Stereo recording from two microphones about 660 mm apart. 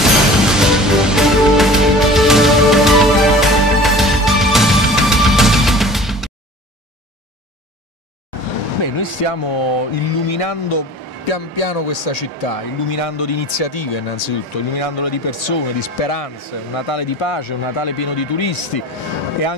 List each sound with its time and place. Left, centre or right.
0.0 s music: centre
8.8 s speech: left
11.2 s speech: left
12.8 s speech: left
14.8 s speech: left